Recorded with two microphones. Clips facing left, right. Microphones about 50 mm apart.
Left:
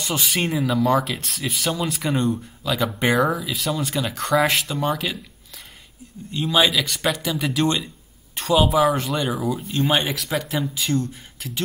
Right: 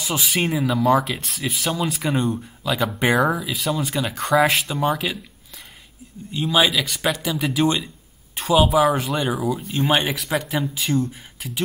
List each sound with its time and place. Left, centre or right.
0.0 s speech: centre
6.3 s speech: centre